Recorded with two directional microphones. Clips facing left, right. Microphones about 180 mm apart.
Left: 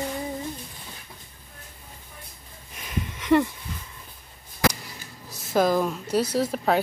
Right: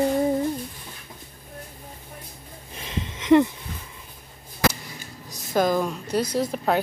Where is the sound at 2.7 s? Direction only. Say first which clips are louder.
Even; 25° right (ahead or behind).